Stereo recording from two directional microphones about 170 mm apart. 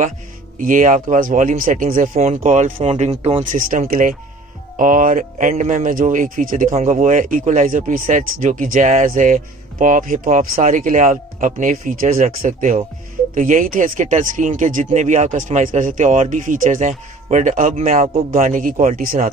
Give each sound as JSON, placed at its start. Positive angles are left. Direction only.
{"t": 0.6, "sound": "speech", "side_deg": -50}
{"t": 3.5, "sound": "speech", "side_deg": -55}
{"t": 18.3, "sound": "speech", "side_deg": -55}